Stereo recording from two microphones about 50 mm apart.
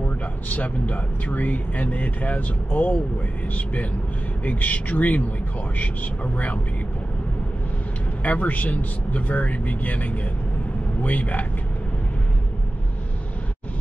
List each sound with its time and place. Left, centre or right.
0.6 s speech: left
4.5 s speech: left
8.2 s speech: left